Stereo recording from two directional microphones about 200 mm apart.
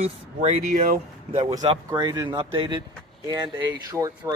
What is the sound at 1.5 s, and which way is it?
Speech, 20° right (ahead or behind).